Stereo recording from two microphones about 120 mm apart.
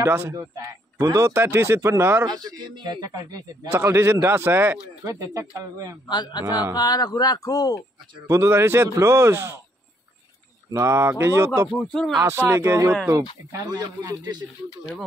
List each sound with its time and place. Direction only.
0.0 s speech: 20° right (ahead or behind)
2.2 s a man's voice: 35° right (ahead or behind)
3.7 s speech: 20° right (ahead or behind)
6.0 s speech: 35° left (ahead or behind)
8.3 s speech: 20° right (ahead or behind)
10.7 s speech: 25° right (ahead or behind)
11.7 s speech: centre (ahead or behind)
12.2 s a man's voice: 25° right (ahead or behind)